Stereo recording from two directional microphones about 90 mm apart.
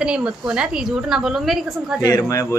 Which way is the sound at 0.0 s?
10° right (ahead or behind).